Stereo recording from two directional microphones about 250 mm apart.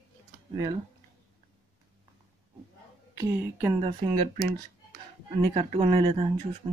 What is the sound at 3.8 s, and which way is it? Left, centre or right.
Speech, right.